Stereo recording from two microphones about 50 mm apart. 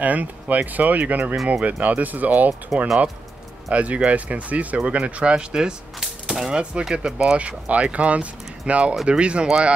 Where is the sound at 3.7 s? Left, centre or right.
Right.